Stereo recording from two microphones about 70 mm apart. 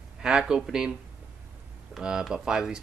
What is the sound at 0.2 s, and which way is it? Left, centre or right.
Speech, centre.